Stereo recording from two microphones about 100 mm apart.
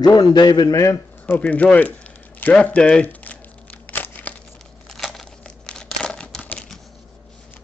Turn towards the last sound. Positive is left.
turn(degrees=10)  # may be behind; listen again after turning